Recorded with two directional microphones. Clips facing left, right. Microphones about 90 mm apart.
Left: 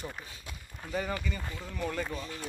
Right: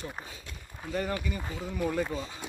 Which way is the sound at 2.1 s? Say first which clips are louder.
Right 2 dB; 20° right (ahead or behind).